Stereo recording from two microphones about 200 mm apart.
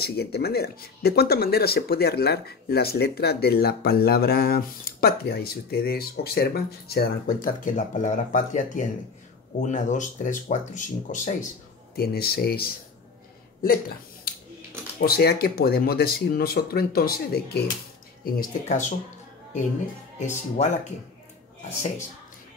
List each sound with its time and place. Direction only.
0.0 s speech: 55° left (ahead or behind); by 11.3 s 40° left (ahead or behind)
11.9 s speech: 50° left (ahead or behind)
15.0 s speech: 50° left (ahead or behind)
20.2 s speech: 35° left (ahead or behind)